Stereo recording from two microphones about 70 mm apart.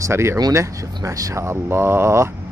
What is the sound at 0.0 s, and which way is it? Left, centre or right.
Mantra, right.